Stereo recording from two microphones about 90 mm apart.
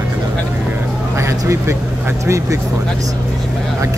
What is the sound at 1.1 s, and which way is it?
Speech, 35° right (ahead or behind).